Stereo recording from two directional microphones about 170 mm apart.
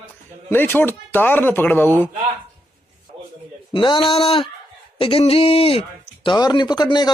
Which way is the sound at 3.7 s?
30° left (ahead or behind).